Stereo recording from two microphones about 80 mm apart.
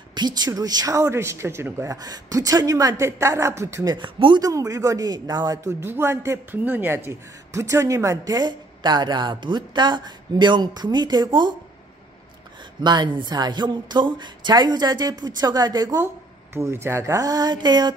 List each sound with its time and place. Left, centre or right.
0.1 s speech: right
2.0 s speech: right
3.1 s speech: right
3.8 s speech: right
4.4 s speech: right
5.6 s speech: right
8.4 s speech: right
12.8 s speech: right
16.5 s speech: right